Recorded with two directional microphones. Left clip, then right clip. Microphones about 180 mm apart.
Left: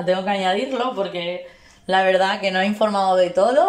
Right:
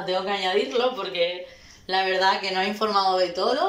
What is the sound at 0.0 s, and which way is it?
A woman's voice, 40° left (ahead or behind).